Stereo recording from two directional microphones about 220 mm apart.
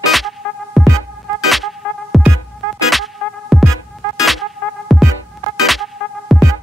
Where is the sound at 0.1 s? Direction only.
Centre (ahead or behind).